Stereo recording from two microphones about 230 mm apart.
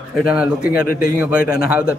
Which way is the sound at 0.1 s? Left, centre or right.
Centre.